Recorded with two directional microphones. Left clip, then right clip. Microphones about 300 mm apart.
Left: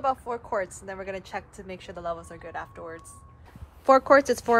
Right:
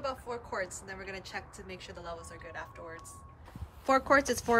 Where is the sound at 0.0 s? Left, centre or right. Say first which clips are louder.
Left 9 dB; centre.